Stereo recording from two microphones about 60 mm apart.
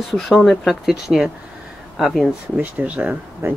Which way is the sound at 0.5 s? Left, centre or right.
Centre.